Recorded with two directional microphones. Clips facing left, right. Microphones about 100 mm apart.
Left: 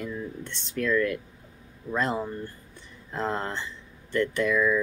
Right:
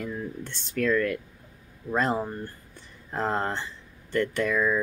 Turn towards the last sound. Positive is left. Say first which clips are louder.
# left 1 dB
turn(degrees=-35)  # may be behind; listen again after turning